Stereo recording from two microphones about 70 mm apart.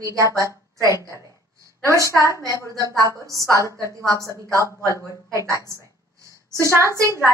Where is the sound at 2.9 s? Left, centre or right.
Right.